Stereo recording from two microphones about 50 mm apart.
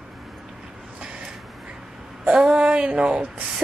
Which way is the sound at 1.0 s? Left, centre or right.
Centre.